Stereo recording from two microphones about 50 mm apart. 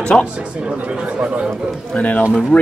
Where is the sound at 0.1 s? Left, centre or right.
Centre.